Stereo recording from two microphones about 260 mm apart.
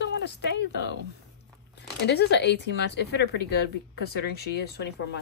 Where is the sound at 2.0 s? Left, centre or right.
Left.